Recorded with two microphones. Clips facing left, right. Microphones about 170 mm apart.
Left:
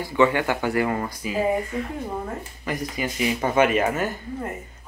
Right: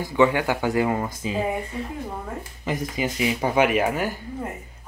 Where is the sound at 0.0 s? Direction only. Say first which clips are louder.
Even; 15° right (ahead or behind).